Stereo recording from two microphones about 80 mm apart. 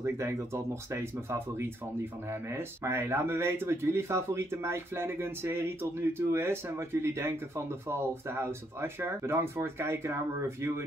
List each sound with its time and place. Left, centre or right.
0.0 s speech: right